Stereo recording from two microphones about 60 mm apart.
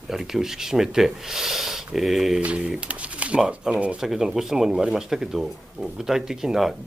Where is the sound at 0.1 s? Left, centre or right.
Centre.